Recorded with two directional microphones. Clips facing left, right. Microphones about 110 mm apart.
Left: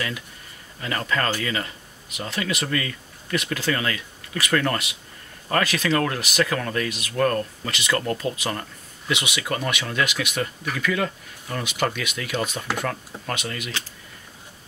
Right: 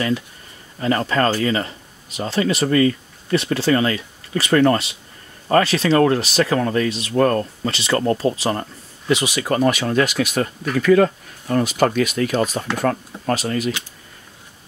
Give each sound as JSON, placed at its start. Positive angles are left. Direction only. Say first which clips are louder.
{"t": 0.7, "sound": "speech", "louder": "right 7 dB", "side_deg": -30}